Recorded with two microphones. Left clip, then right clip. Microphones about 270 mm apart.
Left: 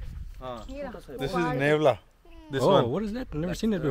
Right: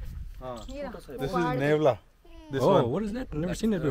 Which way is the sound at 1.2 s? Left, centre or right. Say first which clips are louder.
Left 1 dB; centre.